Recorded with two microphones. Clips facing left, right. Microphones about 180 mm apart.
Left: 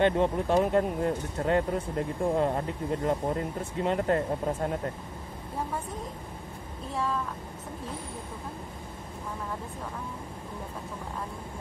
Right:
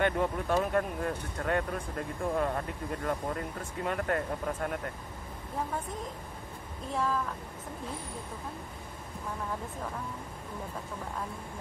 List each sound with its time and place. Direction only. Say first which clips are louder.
0.0 s speech: left 5 dB; 25° left (ahead or behind)
6.9 s speech: even; centre (ahead or behind)